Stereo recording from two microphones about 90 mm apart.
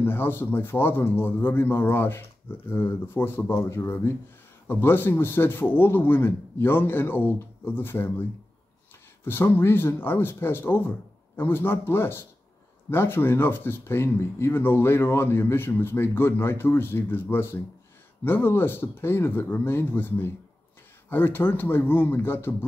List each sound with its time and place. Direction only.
0.0 s speech: 25° left (ahead or behind)